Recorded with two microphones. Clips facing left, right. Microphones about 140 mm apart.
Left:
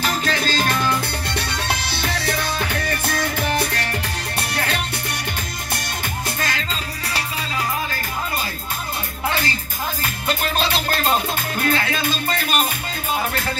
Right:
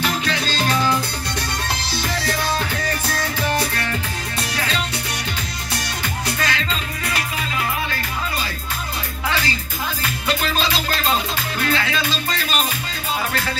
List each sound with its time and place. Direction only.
0.0 s music: 45° left (ahead or behind)
3.1 s music: 55° left (ahead or behind)
6.2 s music: 45° left (ahead or behind)
9.3 s music: 50° left (ahead or behind)